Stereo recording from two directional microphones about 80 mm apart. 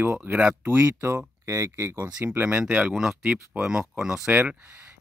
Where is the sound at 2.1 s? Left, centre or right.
Centre.